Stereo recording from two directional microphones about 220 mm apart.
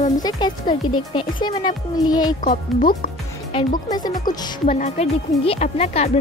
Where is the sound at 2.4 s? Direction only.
40° left (ahead or behind).